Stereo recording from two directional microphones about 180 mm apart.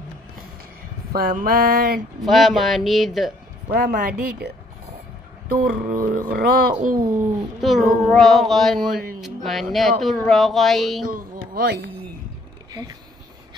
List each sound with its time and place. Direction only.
1.1 s a sound: 55° right (ahead or behind)
2.2 s child singing: centre (ahead or behind)
3.7 s a sound: 55° right (ahead or behind)
5.7 s mantra: 45° right (ahead or behind)
7.6 s child singing: centre (ahead or behind)
11.1 s speech: 60° right (ahead or behind)